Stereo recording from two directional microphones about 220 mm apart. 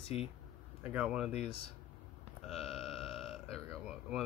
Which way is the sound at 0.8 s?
5° right (ahead or behind).